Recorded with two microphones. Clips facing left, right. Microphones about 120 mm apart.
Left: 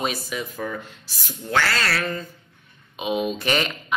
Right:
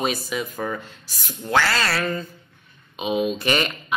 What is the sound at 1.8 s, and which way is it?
Speech, 5° right (ahead or behind).